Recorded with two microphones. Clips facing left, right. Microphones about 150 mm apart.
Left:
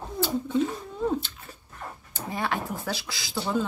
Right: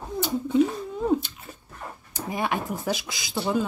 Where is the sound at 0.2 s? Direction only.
15° right (ahead or behind).